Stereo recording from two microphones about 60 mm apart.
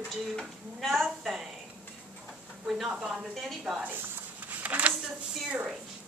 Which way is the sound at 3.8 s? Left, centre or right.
Right.